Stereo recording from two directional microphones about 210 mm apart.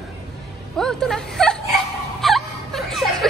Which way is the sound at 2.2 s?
Centre (ahead or behind).